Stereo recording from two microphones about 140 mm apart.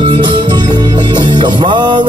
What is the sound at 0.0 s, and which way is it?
Music, 35° right (ahead or behind).